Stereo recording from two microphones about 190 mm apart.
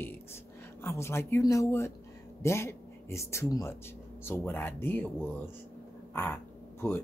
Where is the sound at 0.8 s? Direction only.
15° left (ahead or behind).